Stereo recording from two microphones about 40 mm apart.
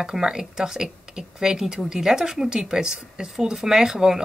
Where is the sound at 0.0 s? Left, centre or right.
Centre.